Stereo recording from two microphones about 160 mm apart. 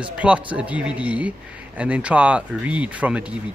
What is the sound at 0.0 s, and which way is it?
Speech, 5° right (ahead or behind).